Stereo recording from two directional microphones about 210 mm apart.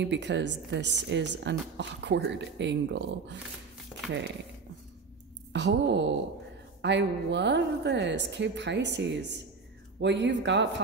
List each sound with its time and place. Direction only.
0.0 s a woman's voice: 55° right (ahead or behind)
5.5 s a woman's voice: 55° right (ahead or behind)